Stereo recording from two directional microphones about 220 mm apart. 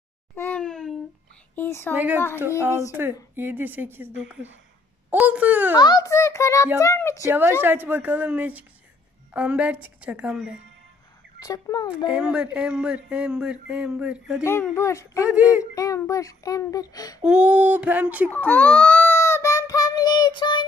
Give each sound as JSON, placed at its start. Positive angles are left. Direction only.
{"t": 0.4, "sound": "a sound", "side_deg": 5}
{"t": 1.5, "sound": "a woman's voice", "side_deg": 10}
{"t": 2.0, "sound": "speech", "side_deg": -10}
{"t": 5.1, "sound": "a sound", "side_deg": -5}
{"t": 5.8, "sound": "speech", "side_deg": 15}
{"t": 7.2, "sound": "speech", "side_deg": -10}
{"t": 11.3, "sound": "speech", "side_deg": 15}
{"t": 12.1, "sound": "speech", "side_deg": -5}
{"t": 14.4, "sound": "speech", "side_deg": 10}
{"t": 15.2, "sound": "speech", "side_deg": -5}
{"t": 15.7, "sound": "speech", "side_deg": 15}
{"t": 17.2, "sound": "speech", "side_deg": -5}
{"t": 18.5, "sound": "child singing", "side_deg": 5}